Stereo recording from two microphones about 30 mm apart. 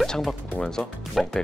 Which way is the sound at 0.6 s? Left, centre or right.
Left.